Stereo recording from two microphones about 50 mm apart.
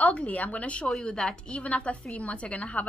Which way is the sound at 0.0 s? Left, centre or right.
Left.